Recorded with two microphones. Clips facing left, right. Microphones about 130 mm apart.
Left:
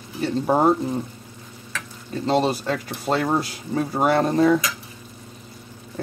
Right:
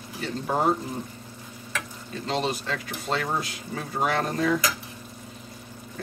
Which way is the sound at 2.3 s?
40° left (ahead or behind).